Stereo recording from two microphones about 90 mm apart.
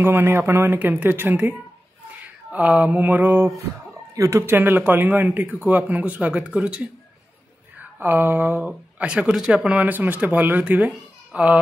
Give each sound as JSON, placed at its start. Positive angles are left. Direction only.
{"t": 0.0, "sound": "speech", "side_deg": -25}
{"t": 2.5, "sound": "mantra", "side_deg": -15}
{"t": 4.1, "sound": "speech", "side_deg": -35}
{"t": 11.3, "sound": "mantra", "side_deg": -15}